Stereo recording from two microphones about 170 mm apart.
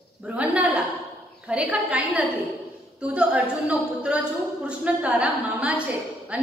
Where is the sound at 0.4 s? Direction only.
10° right (ahead or behind).